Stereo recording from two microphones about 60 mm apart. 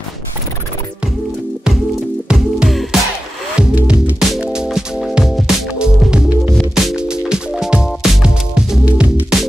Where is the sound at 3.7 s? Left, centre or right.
Right.